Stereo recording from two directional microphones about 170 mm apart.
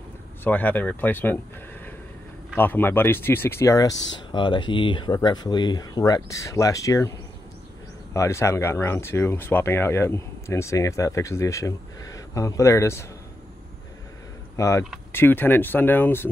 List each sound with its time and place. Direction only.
0.4 s speech: 10° left (ahead or behind)
2.5 s speech: 10° left (ahead or behind)
14.6 s speech: 15° left (ahead or behind)